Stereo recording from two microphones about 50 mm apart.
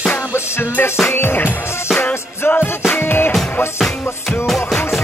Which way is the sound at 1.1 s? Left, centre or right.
Left.